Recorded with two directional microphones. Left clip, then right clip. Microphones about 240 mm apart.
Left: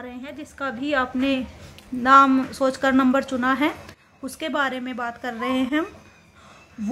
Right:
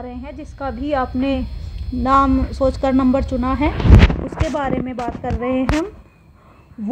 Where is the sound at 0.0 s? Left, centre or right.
Left.